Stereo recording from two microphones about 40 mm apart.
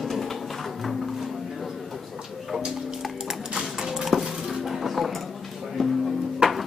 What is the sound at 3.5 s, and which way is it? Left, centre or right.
Dishes, centre.